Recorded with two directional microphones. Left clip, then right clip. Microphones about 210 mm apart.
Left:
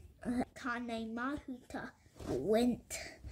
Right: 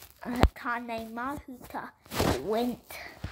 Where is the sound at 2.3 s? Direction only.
45° right (ahead or behind).